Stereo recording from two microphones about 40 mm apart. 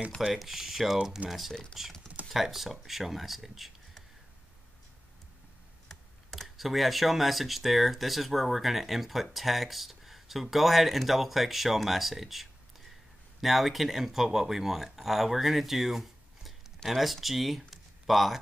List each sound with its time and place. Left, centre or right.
0.2 s speech: centre
1.5 s speech: centre
2.2 s speech: centre
5.9 s speech: centre